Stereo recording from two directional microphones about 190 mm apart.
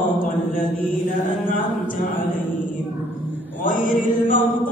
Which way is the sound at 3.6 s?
45° left (ahead or behind).